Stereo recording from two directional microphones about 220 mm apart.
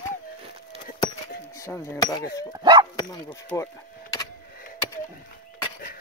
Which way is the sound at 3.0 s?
20° left (ahead or behind).